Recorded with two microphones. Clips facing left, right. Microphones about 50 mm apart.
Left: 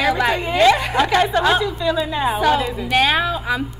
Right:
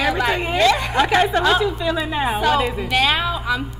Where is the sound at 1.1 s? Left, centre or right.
Centre.